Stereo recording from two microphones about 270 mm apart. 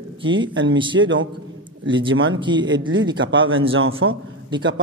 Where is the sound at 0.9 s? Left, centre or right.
Right.